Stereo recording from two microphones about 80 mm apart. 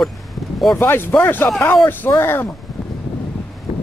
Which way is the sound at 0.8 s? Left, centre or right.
Left.